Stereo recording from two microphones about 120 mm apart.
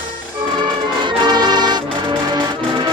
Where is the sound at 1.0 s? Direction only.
40° right (ahead or behind).